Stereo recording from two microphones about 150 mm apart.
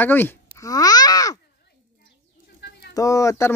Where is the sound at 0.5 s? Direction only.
25° left (ahead or behind).